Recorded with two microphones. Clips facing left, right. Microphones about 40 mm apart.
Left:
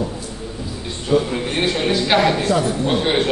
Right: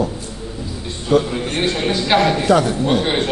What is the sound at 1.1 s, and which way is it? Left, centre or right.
Speech, right.